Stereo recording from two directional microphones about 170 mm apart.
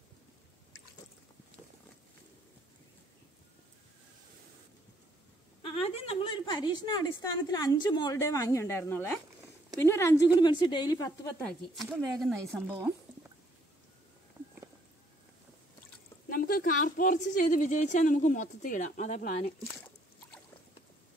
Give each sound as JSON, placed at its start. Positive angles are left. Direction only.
{"t": 5.6, "sound": "a woman's voice", "side_deg": 30}
{"t": 11.4, "sound": "speech", "side_deg": 0}
{"t": 12.7, "sound": "a sound", "side_deg": -15}
{"t": 16.3, "sound": "a woman's voice", "side_deg": 55}